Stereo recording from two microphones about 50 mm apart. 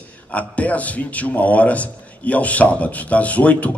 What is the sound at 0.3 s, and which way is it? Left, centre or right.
A man's voice, left.